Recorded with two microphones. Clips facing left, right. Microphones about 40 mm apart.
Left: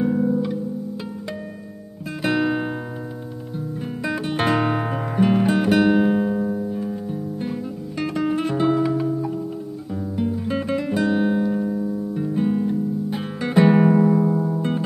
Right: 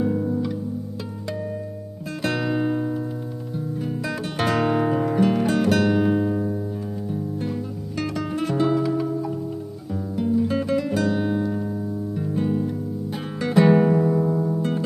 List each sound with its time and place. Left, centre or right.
0.0 s music: centre
2.2 s music: centre
3.5 s guitar: centre
7.1 s music: centre
9.9 s guitar: centre